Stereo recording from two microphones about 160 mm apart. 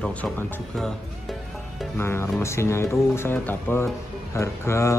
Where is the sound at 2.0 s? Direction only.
15° left (ahead or behind).